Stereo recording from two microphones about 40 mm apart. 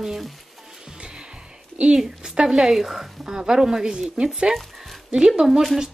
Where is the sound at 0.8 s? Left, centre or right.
Right.